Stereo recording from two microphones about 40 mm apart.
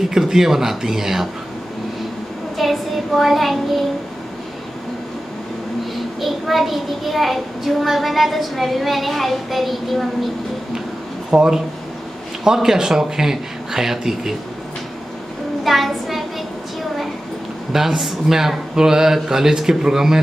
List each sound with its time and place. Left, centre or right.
0.1 s speech: centre
2.5 s child singing: centre
6.2 s a child's voice: centre
11.2 s speech: centre
15.6 s a sound: centre
17.7 s speech: centre